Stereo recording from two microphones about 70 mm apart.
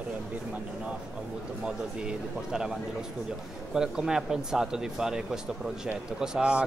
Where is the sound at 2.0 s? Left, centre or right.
Centre.